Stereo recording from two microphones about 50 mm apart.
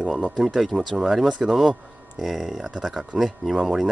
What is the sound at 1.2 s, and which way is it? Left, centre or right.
Speech, centre.